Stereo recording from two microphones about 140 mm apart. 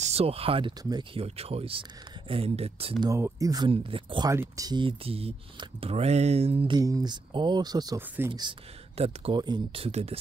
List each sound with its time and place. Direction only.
0.0 s speech: 45° right (ahead or behind)
3.1 s speech: 20° right (ahead or behind)
3.6 s speech: 40° right (ahead or behind)
4.3 s speech: 25° right (ahead or behind); by 6.8 s 45° right (ahead or behind)
6.8 s speech: 25° right (ahead or behind)
8.9 s speech: 45° right (ahead or behind)
9.4 s speech: 35° right (ahead or behind)